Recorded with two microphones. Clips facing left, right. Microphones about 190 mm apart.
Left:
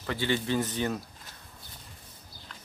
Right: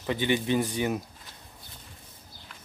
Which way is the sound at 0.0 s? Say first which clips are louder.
Right 3 dB; 20° right (ahead or behind).